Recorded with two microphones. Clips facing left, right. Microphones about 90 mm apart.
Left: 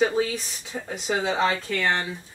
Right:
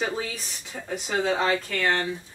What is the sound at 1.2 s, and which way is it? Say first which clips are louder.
Speech: left 1 dB; 5° left (ahead or behind).